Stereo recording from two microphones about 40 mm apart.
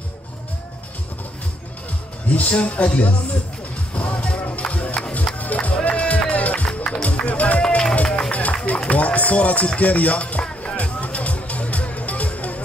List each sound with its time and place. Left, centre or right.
2.2 s a man's voice: left
4.2 s music: left
5.9 s run: left
6.3 s music: left
6.7 s music: left
7.6 s run: centre
8.2 s a sound: left
8.6 s run: left
9.8 s a man's voice: left
10.8 s music: left